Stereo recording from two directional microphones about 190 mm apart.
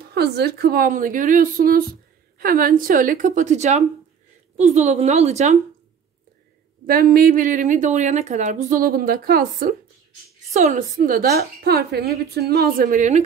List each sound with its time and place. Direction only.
0.1 s a woman's voice: 60° right (ahead or behind); by 5.6 s 35° right (ahead or behind)
6.9 s a woman's voice: 50° right (ahead or behind)